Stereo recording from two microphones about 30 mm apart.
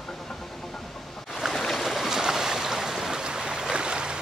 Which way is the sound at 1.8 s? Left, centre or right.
Centre.